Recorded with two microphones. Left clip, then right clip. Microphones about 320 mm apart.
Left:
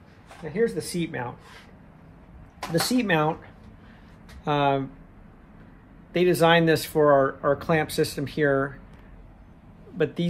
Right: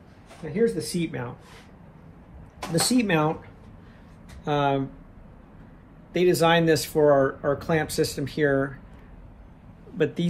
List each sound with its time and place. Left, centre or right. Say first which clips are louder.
0.5 s speech: right 1 dB; left
2.9 s speech: even; left
4.5 s speech: left 1 dB; left
6.1 s speech: left 1 dB; left
9.9 s speech: right 1 dB; left